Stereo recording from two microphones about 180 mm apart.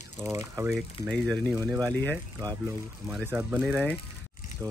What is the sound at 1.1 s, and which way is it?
Speech, 5° left (ahead or behind).